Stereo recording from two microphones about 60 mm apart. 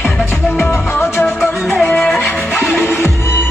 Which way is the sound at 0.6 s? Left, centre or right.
Left.